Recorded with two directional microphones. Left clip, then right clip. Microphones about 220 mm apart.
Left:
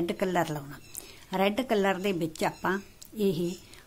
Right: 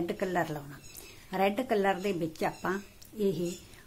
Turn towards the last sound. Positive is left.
turn(degrees=25)  # may be behind; listen again after turning